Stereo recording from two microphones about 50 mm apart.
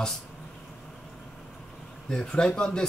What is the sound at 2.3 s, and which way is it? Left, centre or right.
Speech, centre.